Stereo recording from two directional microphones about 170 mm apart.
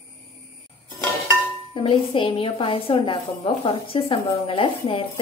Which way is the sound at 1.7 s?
30° left (ahead or behind).